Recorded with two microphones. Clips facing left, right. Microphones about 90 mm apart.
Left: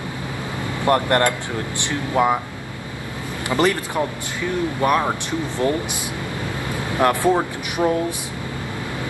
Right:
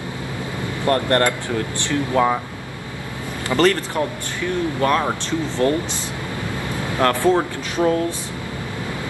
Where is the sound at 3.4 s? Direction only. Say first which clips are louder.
Right 2 dB; 15° left (ahead or behind).